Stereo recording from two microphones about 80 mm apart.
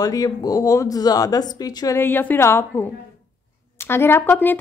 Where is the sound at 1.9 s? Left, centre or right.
Left.